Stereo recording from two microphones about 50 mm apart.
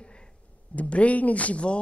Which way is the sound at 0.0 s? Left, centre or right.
Centre.